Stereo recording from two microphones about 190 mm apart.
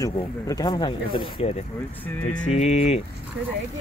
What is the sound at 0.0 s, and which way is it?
Speech, 20° left (ahead or behind).